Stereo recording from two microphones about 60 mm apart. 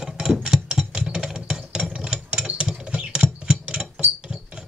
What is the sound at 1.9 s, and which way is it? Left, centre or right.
Ratchet, centre.